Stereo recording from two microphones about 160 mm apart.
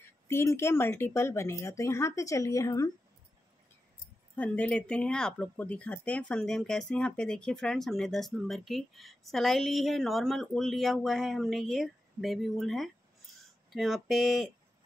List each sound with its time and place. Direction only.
0.0 s speech: 15° left (ahead or behind)
4.4 s speech: 10° left (ahead or behind)